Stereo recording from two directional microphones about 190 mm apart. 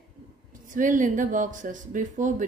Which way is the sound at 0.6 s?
45° right (ahead or behind).